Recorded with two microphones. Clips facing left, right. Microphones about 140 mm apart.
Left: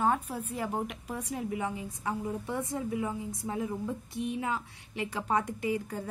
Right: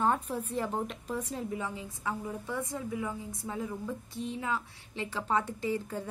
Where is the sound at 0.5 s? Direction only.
10° left (ahead or behind).